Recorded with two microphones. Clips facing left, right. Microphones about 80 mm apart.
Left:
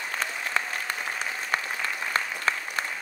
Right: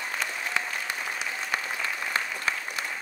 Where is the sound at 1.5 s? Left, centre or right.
Left.